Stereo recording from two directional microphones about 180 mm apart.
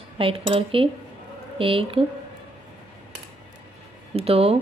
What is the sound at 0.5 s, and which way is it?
A woman's voice, 30° right (ahead or behind).